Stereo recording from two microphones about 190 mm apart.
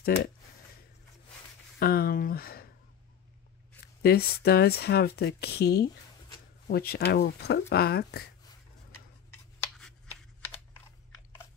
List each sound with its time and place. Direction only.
0.0 s speech: 55° left (ahead or behind)
1.8 s speech: 50° left (ahead or behind)
3.8 s speech: 55° left (ahead or behind)
9.3 s a sound: 5° left (ahead or behind)